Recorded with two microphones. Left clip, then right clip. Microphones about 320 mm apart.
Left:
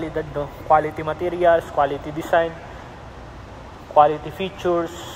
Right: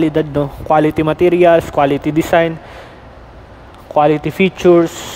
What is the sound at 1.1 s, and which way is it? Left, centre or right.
Speech, right.